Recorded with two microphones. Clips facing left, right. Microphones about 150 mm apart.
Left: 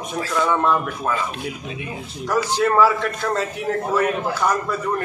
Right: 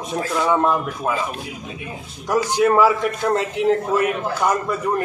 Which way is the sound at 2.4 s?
15° right (ahead or behind).